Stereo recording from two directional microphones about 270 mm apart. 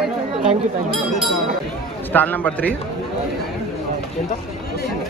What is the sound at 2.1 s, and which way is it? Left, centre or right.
Speech, centre.